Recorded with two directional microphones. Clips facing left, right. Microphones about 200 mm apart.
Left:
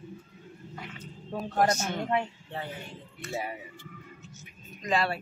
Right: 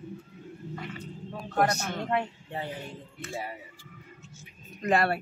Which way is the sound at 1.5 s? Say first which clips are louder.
Even; 60° right (ahead or behind).